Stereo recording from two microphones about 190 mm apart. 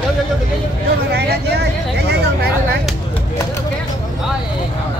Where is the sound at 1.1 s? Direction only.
60° right (ahead or behind).